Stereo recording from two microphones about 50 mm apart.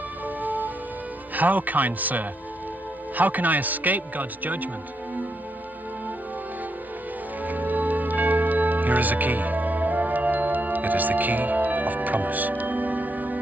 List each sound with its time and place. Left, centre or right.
0.4 s music: right
1.3 s speech: right
7.4 s music: right